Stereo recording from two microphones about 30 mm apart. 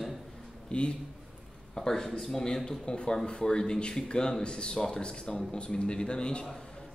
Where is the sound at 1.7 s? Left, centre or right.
Centre.